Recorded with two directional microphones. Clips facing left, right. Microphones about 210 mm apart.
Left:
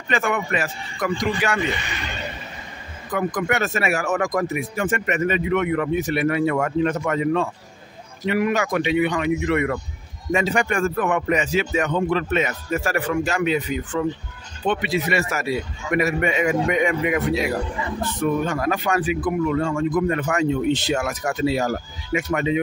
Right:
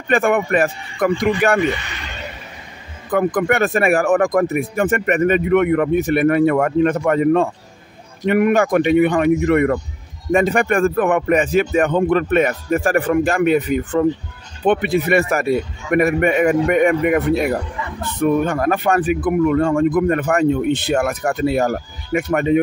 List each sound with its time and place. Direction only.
0.1 s speech: 55° right (ahead or behind)
3.1 s speech: 55° right (ahead or behind)